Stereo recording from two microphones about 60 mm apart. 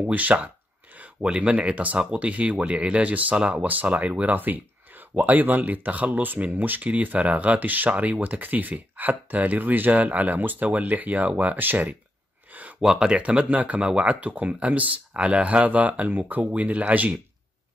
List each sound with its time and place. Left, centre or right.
0.0 s speech: right
12.9 s speech: centre